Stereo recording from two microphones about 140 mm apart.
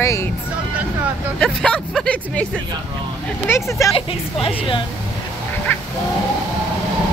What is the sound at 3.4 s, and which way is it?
Speech, 20° left (ahead or behind).